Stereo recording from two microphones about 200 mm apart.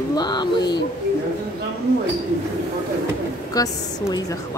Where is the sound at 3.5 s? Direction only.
20° left (ahead or behind).